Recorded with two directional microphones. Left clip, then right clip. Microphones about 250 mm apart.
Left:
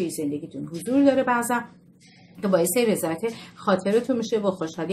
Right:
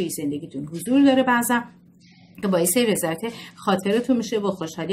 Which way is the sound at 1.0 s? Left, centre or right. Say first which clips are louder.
Right 2 dB; right.